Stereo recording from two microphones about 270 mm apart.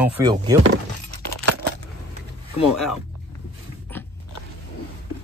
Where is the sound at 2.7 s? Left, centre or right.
Centre.